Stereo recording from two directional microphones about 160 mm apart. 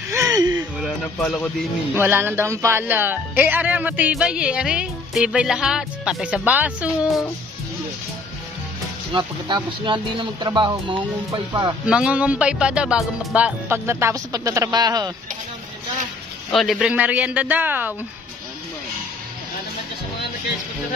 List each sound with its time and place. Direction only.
0.1 s gasp: 20° right (ahead or behind)
0.6 s a sound: 5° right (ahead or behind)
1.1 s speech: 5° left (ahead or behind)
2.0 s speech: 15° right (ahead or behind)
9.1 s speech: 30° right (ahead or behind)
11.8 s speech: 5° right (ahead or behind); by 15.1 s 25° right (ahead or behind)
16.5 s speech: centre (ahead or behind)